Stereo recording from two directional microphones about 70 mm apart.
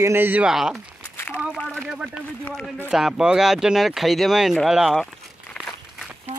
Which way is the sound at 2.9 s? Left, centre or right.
Centre.